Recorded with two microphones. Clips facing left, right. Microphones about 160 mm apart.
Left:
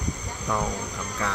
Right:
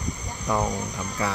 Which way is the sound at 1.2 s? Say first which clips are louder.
Right 2 dB; 5° right (ahead or behind).